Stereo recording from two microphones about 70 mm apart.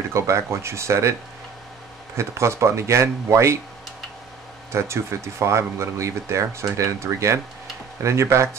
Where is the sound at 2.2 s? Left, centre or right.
Right.